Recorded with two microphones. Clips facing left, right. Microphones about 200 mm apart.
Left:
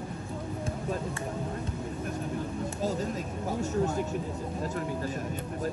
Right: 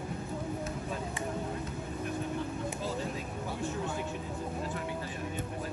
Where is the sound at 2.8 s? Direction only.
40° left (ahead or behind).